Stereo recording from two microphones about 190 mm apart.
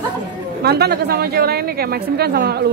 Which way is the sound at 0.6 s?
55° right (ahead or behind).